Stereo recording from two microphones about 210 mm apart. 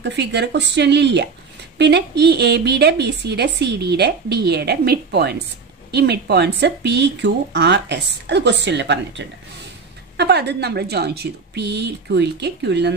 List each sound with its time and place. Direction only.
0.0 s a woman's voice: 55° right (ahead or behind)